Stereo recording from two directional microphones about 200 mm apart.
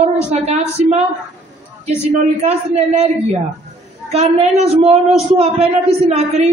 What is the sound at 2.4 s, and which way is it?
Speech, 35° right (ahead or behind).